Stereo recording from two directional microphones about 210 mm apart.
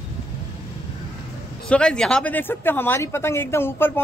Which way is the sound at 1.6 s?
5° left (ahead or behind).